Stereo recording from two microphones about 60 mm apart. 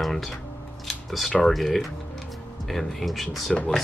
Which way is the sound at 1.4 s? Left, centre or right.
Centre.